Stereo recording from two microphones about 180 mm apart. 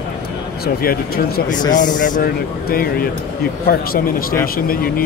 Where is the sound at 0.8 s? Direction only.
55° left (ahead or behind).